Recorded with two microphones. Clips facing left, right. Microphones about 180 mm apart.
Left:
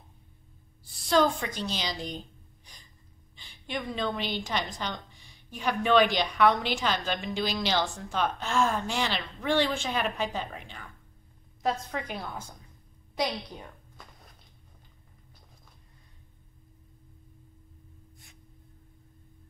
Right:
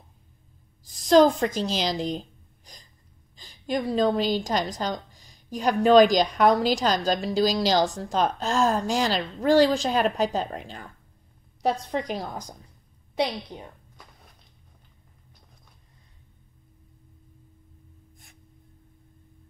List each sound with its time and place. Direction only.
1.0 s a woman's voice: 40° right (ahead or behind)
1.7 s speech: 90° right
2.1 s gasp: 40° right (ahead or behind)
3.3 s a woman's voice: 40° right (ahead or behind)
13.1 s a woman's voice: 25° right (ahead or behind)